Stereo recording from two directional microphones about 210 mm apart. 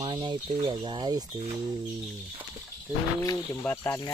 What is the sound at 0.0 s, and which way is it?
Speech, 20° right (ahead or behind).